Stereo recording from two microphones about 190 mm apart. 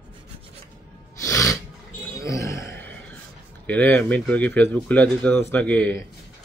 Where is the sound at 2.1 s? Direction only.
15° left (ahead or behind).